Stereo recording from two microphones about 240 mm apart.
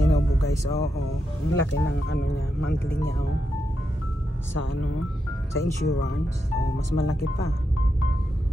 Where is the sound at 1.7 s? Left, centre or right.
Left.